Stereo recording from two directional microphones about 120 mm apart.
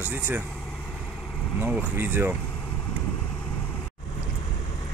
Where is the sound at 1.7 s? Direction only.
15° right (ahead or behind).